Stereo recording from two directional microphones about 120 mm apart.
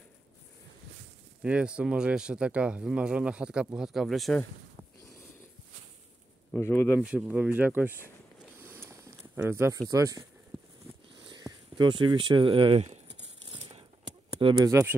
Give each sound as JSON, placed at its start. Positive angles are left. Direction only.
{"t": 1.4, "sound": "speech", "side_deg": -10}
{"t": 6.5, "sound": "speech", "side_deg": 20}
{"t": 7.0, "sound": "speech", "side_deg": -10}
{"t": 8.5, "sound": "a sound", "side_deg": -20}
{"t": 11.1, "sound": "speech", "side_deg": -40}
{"t": 13.5, "sound": "a sound", "side_deg": -45}
{"t": 14.7, "sound": "speech", "side_deg": -20}